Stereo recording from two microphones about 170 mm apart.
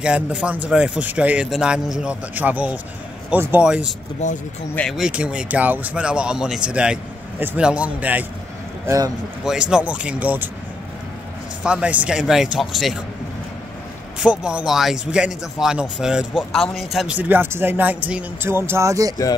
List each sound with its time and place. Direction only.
0.0 s speech: 5° right (ahead or behind)
9.4 s speech: 5° right (ahead or behind)
11.6 s speech: 5° right (ahead or behind)
14.2 s speech: 5° right (ahead or behind)